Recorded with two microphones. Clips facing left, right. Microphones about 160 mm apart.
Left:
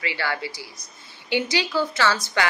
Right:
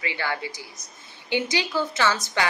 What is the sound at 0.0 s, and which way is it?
Speech, 20° right (ahead or behind).